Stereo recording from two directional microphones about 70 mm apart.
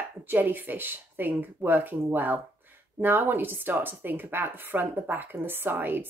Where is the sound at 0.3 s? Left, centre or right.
Right.